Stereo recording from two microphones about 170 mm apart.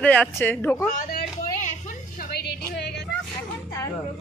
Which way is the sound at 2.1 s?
65° left (ahead or behind).